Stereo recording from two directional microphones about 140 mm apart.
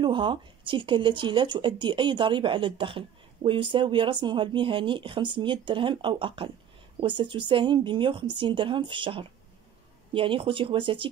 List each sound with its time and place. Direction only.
0.0 s speech: 35° right (ahead or behind)